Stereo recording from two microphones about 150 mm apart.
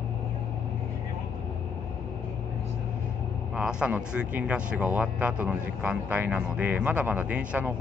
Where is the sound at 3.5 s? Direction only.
5° right (ahead or behind).